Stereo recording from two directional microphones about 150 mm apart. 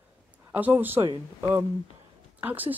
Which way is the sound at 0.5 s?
10° right (ahead or behind).